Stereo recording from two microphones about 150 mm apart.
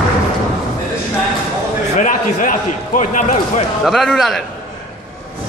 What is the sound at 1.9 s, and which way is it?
A man's voice, 60° left (ahead or behind).